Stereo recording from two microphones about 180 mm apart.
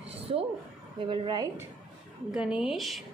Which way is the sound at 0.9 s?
25° right (ahead or behind).